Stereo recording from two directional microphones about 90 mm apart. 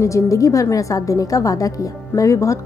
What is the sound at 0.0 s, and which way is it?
A woman's voice, 35° left (ahead or behind).